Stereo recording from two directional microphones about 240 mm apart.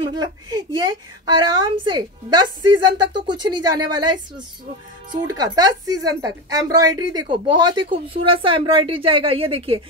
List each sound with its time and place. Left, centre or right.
0.0 s a woman's voice: centre